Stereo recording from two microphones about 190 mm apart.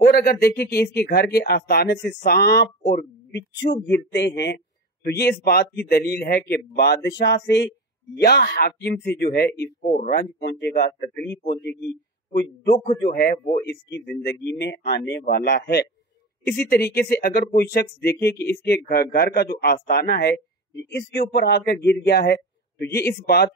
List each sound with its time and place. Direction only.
0.0 s speech: 55° left (ahead or behind)
10.7 s speech: 45° left (ahead or behind)
12.3 s a man's voice: 60° left (ahead or behind)